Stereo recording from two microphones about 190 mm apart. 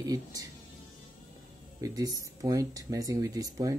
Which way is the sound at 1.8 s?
20° right (ahead or behind).